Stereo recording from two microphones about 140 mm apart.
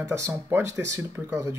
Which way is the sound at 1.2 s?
10° right (ahead or behind).